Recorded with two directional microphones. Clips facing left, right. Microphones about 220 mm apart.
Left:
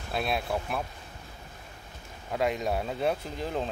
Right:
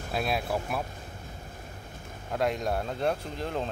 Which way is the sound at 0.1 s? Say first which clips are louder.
Even; centre (ahead or behind).